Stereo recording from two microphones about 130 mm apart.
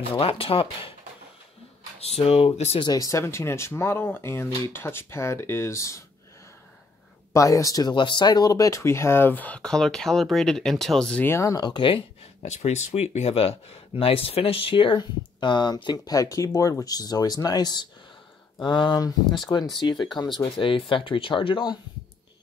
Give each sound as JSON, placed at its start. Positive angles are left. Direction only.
{"t": 0.1, "sound": "speech", "side_deg": 45}
{"t": 2.0, "sound": "speech", "side_deg": 50}
{"t": 2.8, "sound": "speech", "side_deg": 30}
{"t": 7.3, "sound": "speech", "side_deg": 25}
{"t": 11.7, "sound": "a sound", "side_deg": 40}
{"t": 12.4, "sound": "speech", "side_deg": 60}